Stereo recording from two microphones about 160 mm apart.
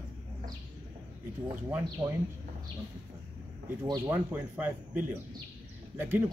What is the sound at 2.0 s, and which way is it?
Speech, 25° right (ahead or behind).